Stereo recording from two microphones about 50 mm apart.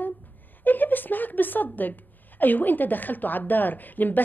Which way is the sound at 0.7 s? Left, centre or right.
Left.